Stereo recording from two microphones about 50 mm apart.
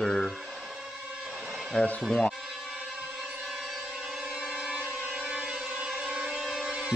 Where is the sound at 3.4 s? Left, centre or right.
Centre.